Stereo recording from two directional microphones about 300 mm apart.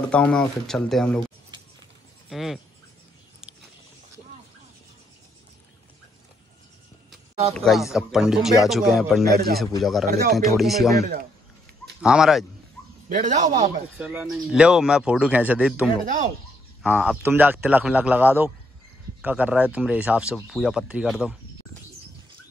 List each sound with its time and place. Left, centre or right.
0.1 s speech: centre
2.2 s speech: centre
7.5 s speech: centre
9.2 s a man's voice: right
9.8 s speech: centre
10.0 s a man's voice: right
10.3 s speech: centre
11.0 s a man's voice: right
12.0 s speech: centre
13.1 s a man's voice: right
13.9 s speech: centre